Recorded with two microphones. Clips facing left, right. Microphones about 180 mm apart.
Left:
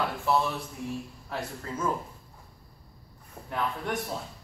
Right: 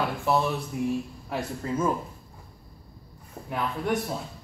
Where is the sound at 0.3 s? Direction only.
15° right (ahead or behind).